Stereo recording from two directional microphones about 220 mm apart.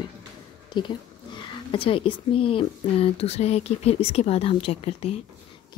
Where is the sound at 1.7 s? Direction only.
25° left (ahead or behind).